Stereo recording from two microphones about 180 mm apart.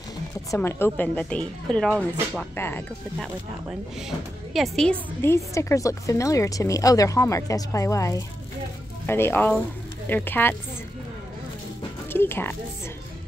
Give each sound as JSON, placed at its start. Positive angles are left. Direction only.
{"t": 0.6, "sound": "a woman's voice", "side_deg": 15}
{"t": 4.6, "sound": "a woman's voice", "side_deg": 0}
{"t": 5.2, "sound": "a woman's voice", "side_deg": 15}
{"t": 12.1, "sound": "speech", "side_deg": 10}